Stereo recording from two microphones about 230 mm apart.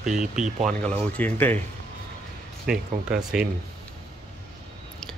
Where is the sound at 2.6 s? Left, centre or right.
Centre.